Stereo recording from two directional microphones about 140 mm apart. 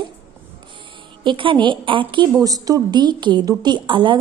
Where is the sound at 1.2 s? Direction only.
35° right (ahead or behind).